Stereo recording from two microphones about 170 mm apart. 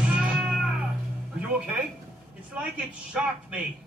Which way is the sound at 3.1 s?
10° right (ahead or behind).